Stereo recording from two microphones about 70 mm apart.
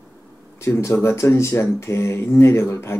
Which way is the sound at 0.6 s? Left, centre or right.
Left.